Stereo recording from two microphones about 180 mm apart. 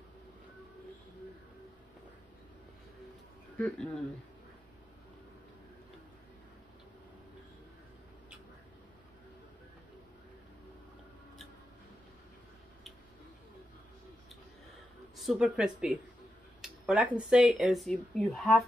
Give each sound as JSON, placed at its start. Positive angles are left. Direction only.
{"t": 3.5, "sound": "speech", "side_deg": 5}
{"t": 15.1, "sound": "speech", "side_deg": -5}